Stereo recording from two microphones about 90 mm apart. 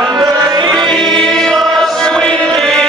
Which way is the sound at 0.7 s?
5° left (ahead or behind).